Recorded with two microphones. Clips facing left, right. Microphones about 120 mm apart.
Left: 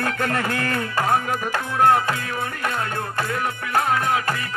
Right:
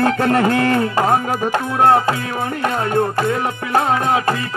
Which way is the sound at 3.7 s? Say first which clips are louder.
Right 5 dB; 25° right (ahead or behind).